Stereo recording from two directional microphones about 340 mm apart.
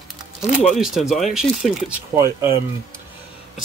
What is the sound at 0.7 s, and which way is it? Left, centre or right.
Speech, centre.